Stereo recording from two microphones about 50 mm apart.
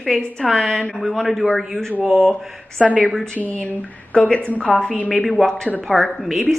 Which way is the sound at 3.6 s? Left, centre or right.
Left.